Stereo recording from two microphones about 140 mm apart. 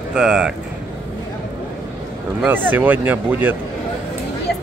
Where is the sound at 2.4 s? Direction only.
15° right (ahead or behind).